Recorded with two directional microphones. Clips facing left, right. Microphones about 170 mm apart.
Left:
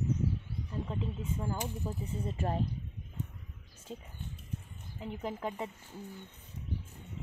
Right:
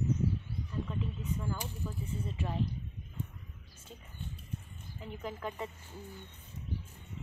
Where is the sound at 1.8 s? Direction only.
40° left (ahead or behind).